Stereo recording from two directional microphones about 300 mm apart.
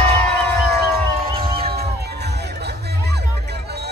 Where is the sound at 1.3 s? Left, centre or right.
Centre.